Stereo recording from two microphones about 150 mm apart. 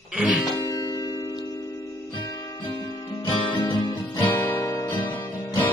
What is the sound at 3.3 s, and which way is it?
Guitar, 30° left (ahead or behind).